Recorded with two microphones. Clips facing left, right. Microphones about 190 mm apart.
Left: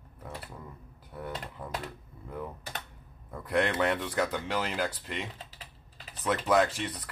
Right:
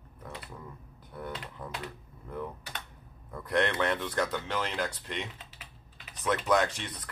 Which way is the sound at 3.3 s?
10° left (ahead or behind).